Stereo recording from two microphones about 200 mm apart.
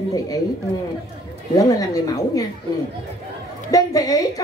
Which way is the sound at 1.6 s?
15° left (ahead or behind).